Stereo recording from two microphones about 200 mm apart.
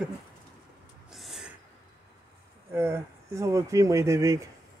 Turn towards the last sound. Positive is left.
turn(degrees=-15)  # may be behind; listen again after turning